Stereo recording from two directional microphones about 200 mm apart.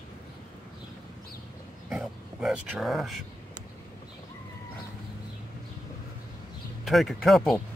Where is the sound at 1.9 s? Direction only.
Centre (ahead or behind).